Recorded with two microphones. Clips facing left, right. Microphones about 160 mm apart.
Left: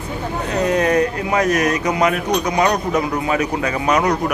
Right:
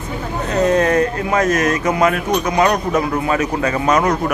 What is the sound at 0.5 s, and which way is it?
A man's voice, 15° left (ahead or behind).